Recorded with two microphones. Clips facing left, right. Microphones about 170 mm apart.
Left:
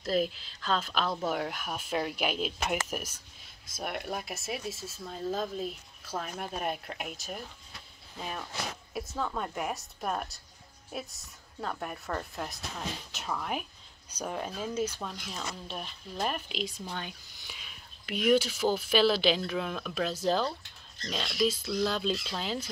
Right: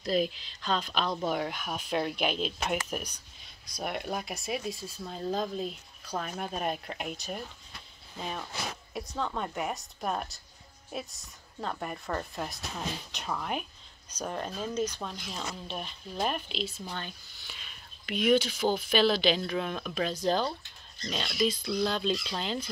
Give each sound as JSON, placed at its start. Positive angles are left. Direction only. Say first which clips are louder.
{"t": 0.0, "sound": "speech", "louder": "right 1 dB", "side_deg": 0}